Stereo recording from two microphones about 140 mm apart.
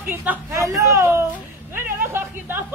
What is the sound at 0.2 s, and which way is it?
A woman's voice, 15° right (ahead or behind).